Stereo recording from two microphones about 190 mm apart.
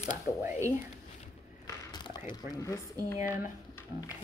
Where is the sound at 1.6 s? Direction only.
20° left (ahead or behind).